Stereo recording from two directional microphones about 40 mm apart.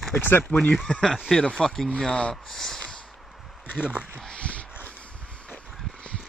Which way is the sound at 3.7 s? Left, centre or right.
Right.